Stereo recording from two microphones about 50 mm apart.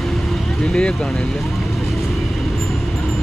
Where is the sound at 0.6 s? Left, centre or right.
Centre.